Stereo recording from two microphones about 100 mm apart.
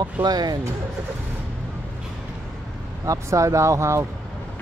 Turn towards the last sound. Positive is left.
turn(degrees=-30)  # may be behind; listen again after turning